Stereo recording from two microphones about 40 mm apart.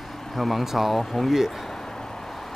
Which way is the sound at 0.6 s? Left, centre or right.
Centre.